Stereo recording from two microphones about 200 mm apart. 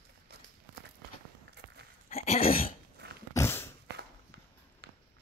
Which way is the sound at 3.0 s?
55° right (ahead or behind).